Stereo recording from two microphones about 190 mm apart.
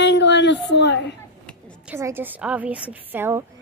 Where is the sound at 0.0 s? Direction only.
70° left (ahead or behind).